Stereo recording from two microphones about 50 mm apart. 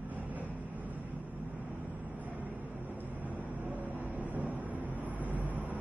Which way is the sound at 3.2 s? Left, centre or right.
Right.